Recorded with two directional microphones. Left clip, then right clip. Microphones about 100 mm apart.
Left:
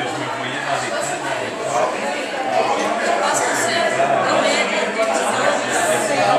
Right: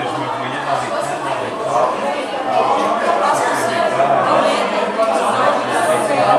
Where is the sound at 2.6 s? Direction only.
15° left (ahead or behind).